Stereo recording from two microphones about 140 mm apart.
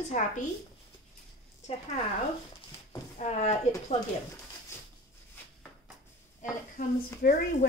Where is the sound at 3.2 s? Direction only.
55° left (ahead or behind).